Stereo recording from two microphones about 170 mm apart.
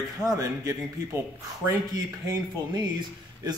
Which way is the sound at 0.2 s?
20° right (ahead or behind).